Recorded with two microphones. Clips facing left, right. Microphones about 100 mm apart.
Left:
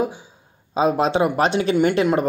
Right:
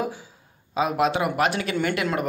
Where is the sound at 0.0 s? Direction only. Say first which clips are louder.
Left 5 dB; 20° left (ahead or behind).